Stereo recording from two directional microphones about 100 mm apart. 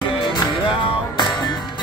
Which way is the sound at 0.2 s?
55° left (ahead or behind).